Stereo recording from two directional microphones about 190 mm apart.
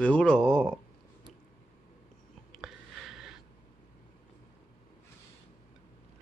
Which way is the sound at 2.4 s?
Centre (ahead or behind).